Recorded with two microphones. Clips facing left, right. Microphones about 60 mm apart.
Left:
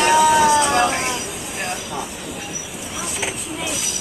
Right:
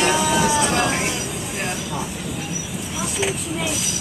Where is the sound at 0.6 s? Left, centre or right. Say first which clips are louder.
Left 3 dB; centre.